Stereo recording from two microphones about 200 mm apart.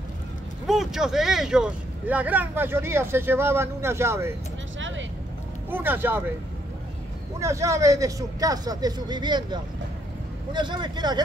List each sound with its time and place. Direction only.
0.7 s speech: centre (ahead or behind)
4.7 s vehicle: 70° right (ahead or behind)
5.7 s speech: 10° right (ahead or behind)
7.3 s speech: 15° right (ahead or behind)